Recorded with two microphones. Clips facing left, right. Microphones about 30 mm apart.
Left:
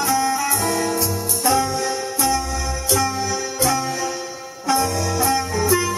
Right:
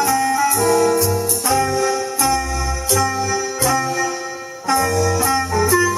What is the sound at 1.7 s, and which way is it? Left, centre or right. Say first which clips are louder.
Music: right 4 dB; centre.